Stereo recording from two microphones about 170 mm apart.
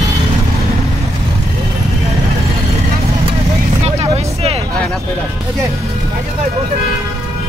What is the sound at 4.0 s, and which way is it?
Vehicle, 35° right (ahead or behind).